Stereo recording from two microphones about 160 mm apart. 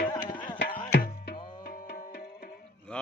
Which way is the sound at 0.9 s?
90° left.